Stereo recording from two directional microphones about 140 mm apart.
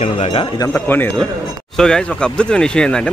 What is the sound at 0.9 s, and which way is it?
Speech, 15° left (ahead or behind).